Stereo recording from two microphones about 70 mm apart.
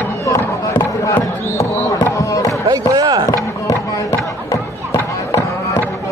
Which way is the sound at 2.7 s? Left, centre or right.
Right.